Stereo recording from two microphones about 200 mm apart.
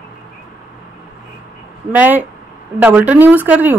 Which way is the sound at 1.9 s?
10° right (ahead or behind).